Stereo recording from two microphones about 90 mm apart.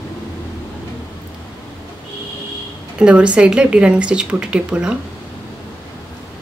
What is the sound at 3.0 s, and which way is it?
A woman's voice, 10° right (ahead or behind).